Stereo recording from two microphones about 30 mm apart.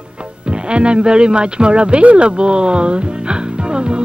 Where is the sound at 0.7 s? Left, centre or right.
Right.